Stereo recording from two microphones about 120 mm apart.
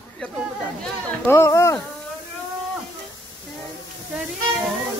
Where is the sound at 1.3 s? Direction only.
25° left (ahead or behind).